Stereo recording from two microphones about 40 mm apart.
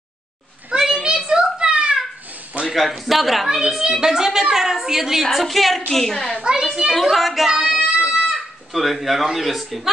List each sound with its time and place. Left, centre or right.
0.7 s a sound: centre
1.7 s a sound: right
2.6 s a man's voice: centre
3.4 s a woman's voice: centre
5.2 s speech: centre
6.3 s a child's voice: right
6.9 s a man's voice: centre
8.0 s a sound: centre
8.4 s speech: centre